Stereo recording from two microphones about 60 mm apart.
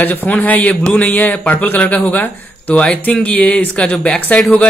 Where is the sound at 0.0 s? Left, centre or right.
Left.